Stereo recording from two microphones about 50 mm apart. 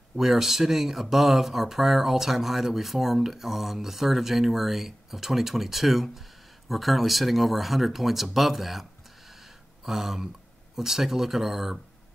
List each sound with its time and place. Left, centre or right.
0.1 s speech: centre
9.8 s speech: centre